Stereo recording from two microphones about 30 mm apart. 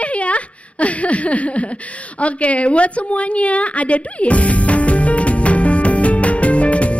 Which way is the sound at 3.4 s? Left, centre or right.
Left.